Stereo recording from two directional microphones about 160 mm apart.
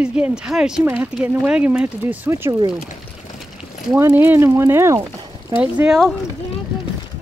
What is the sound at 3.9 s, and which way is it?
A child's voice, 15° right (ahead or behind).